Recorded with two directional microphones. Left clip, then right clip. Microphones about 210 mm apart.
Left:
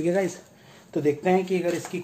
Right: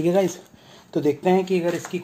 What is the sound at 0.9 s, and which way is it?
Speech, 45° right (ahead or behind).